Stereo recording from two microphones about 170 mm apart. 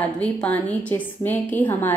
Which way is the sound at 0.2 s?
10° left (ahead or behind).